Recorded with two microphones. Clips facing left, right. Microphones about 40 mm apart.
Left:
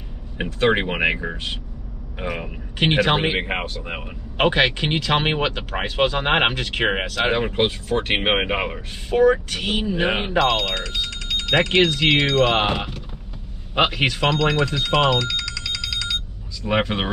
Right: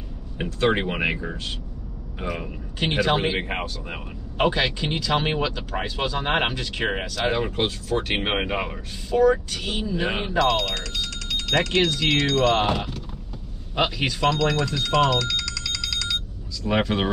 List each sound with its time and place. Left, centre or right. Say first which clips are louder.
0.4 s speech: left 3 dB; left
2.8 s speech: left 3 dB; left
3.3 s speech: left 3 dB; left
10.4 s speech: right 2 dB; centre
11.7 s speech: left 5 dB; left
13.7 s speech: left 4 dB; left
14.4 s telephone bell ringing: left 3 dB; left
16.6 s speech: left 1 dB; left